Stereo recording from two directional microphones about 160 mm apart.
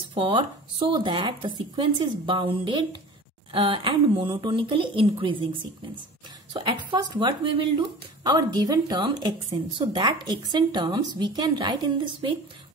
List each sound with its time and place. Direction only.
0.1 s speech: 30° right (ahead or behind)